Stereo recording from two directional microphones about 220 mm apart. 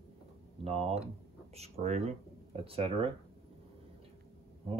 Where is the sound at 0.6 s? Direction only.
30° right (ahead or behind).